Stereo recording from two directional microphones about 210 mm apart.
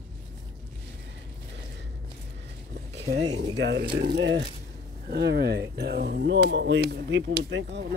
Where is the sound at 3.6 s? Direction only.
55° right (ahead or behind).